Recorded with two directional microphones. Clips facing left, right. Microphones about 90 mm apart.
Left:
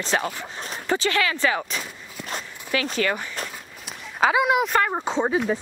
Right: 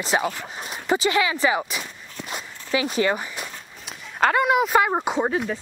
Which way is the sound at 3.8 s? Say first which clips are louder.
Even; 5° left (ahead or behind).